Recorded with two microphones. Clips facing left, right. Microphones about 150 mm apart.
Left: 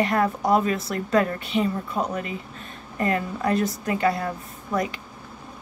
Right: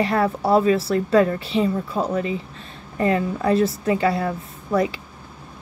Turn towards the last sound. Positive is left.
turn(degrees=-30)  # may be behind; listen again after turning